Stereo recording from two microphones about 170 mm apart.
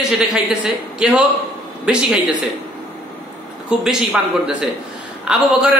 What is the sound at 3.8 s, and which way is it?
A man's voice, 5° right (ahead or behind).